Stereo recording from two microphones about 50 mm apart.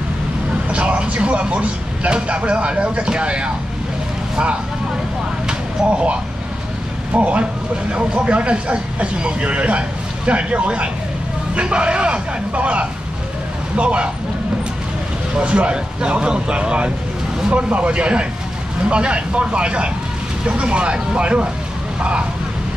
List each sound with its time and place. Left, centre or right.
0.7 s speech: right
5.5 s a sound: right
7.2 s speech: right
15.3 s speech: right